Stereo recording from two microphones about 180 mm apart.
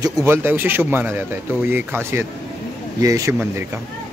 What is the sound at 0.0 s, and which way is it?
Speech, 15° right (ahead or behind).